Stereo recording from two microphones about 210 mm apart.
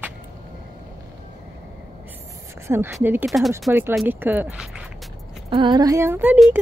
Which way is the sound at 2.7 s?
15° right (ahead or behind).